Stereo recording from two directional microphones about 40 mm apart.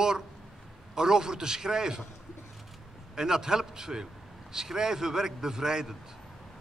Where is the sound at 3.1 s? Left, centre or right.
Centre.